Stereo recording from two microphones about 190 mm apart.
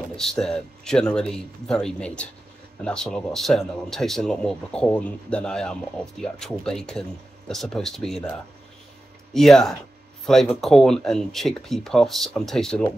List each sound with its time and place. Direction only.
0.1 s speech: 5° left (ahead or behind)